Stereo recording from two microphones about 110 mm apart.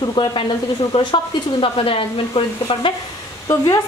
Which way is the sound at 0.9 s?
55° left (ahead or behind).